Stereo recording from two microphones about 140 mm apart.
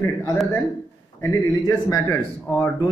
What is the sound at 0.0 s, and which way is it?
Speech, 20° left (ahead or behind).